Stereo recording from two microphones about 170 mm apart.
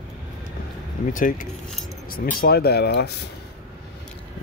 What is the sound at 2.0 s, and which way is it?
Speech, 60° left (ahead or behind).